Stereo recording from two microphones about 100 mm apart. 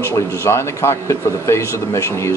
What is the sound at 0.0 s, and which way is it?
Speech, 30° left (ahead or behind).